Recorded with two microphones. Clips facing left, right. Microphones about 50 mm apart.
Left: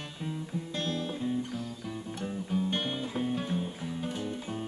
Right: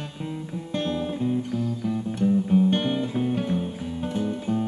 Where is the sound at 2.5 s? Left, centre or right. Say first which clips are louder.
Right 10 dB; right.